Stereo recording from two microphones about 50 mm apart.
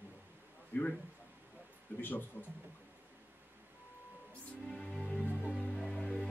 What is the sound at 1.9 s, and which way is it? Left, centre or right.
Speech, left.